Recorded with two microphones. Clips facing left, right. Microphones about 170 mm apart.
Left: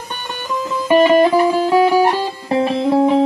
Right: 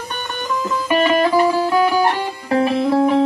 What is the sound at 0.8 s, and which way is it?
Music, 20° left (ahead or behind).